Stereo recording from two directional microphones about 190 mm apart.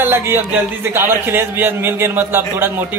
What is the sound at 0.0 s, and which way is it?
A man's voice, 15° right (ahead or behind).